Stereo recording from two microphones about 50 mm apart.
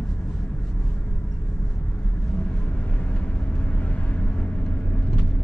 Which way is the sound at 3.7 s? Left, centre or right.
Left.